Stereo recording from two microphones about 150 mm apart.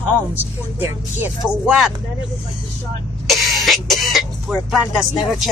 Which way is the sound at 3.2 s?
Centre (ahead or behind).